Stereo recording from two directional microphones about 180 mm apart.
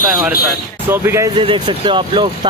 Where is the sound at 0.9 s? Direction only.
15° right (ahead or behind).